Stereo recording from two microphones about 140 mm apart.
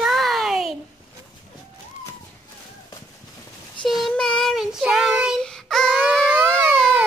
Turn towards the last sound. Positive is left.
turn(degrees=5)  # may be behind; listen again after turning